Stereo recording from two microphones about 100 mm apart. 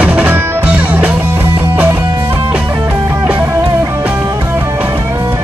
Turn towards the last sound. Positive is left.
turn(degrees=-30)  # may be behind; listen again after turning